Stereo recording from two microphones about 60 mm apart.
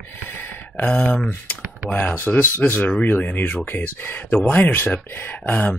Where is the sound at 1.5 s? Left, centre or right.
Left.